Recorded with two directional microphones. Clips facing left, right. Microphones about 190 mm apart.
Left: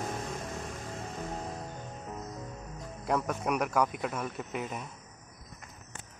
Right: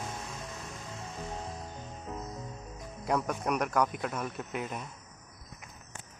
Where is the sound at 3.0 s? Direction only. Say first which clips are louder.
Even; centre (ahead or behind).